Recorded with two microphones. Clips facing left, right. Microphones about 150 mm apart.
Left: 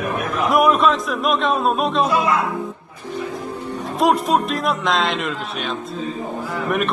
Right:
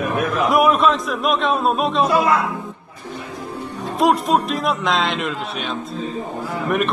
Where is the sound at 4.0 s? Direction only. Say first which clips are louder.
Right 1 dB; centre (ahead or behind).